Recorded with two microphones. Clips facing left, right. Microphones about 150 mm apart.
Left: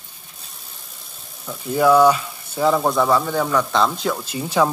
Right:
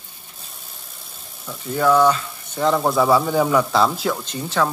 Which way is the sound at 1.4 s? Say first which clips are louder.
Left 2 dB; 10° left (ahead or behind).